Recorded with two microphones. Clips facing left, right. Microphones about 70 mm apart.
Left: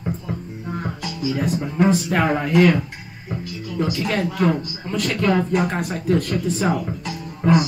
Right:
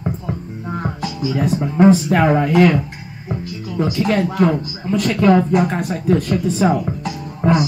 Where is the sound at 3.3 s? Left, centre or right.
Centre.